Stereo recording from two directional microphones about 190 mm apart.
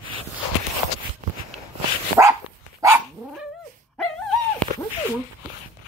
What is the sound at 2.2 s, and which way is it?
Dog, 15° right (ahead or behind).